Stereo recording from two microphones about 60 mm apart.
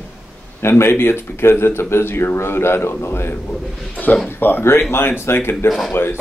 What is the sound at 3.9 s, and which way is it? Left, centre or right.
A man's voice, left.